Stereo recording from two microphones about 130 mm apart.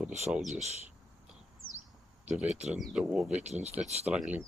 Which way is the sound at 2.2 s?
10° right (ahead or behind).